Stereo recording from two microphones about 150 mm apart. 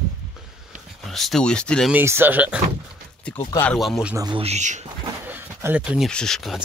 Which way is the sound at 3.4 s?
20° left (ahead or behind).